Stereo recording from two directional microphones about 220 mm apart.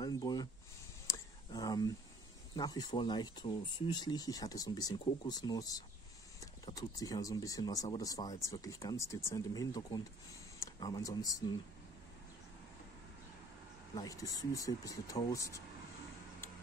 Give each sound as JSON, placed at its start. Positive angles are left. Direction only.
{"t": 0.0, "sound": "a sound", "side_deg": 15}
{"t": 2.5, "sound": "speech", "side_deg": 20}
{"t": 13.9, "sound": "speech", "side_deg": 15}